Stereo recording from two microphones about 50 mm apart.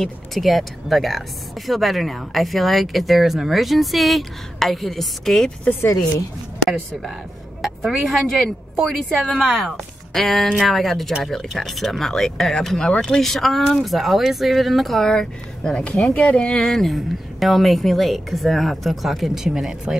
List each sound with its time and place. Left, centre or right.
0.0 s speech: centre
7.6 s speech: centre